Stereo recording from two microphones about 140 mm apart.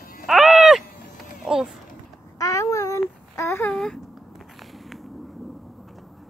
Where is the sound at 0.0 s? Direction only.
90° left.